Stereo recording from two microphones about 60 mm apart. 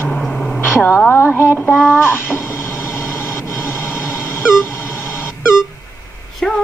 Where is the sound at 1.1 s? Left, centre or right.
Left.